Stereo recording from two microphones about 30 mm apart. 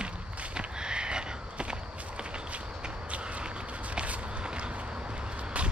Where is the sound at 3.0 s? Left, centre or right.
Right.